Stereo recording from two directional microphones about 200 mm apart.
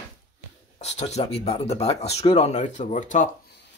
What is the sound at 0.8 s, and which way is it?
Speech, 35° left (ahead or behind).